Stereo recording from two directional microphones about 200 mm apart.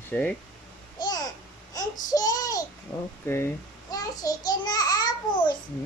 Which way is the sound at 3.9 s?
20° left (ahead or behind).